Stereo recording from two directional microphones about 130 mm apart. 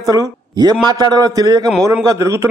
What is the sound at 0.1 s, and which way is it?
A man's voice, 30° right (ahead or behind).